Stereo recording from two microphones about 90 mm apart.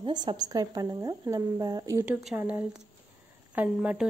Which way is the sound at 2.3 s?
25° right (ahead or behind).